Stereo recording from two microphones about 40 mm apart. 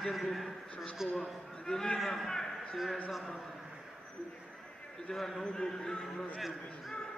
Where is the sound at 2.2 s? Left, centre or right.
Centre.